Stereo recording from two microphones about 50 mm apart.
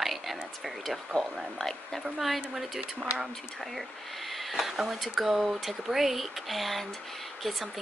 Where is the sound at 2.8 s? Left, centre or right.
Right.